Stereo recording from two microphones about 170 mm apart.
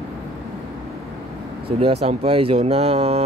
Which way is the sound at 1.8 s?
35° right (ahead or behind).